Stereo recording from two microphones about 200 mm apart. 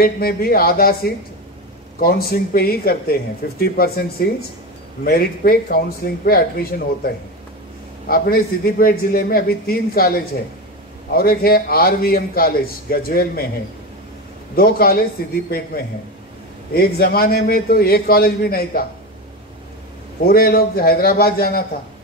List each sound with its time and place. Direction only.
0.0 s speech: 50° left (ahead or behind)
8.1 s speech: 50° left (ahead or behind)
14.5 s speech: 50° left (ahead or behind)
20.2 s speech: 50° left (ahead or behind)